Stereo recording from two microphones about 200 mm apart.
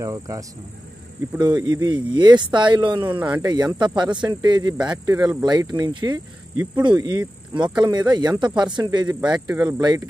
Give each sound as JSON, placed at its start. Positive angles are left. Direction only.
{"t": 0.0, "sound": "speech", "side_deg": -15}
{"t": 1.5, "sound": "speech", "side_deg": -20}
{"t": 3.2, "sound": "speech", "side_deg": -5}
{"t": 3.4, "sound": "speech", "side_deg": -20}